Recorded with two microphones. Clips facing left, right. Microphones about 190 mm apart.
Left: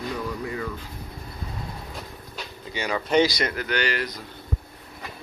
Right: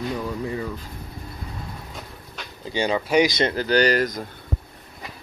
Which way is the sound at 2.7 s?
30° right (ahead or behind).